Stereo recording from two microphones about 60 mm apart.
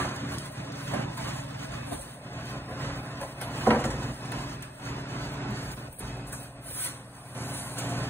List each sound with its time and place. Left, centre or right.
0.0 s vehicle: left
7.3 s vehicle: left